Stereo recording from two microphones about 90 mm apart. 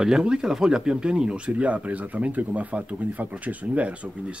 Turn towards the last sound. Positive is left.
turn(degrees=-15)  # may be behind; listen again after turning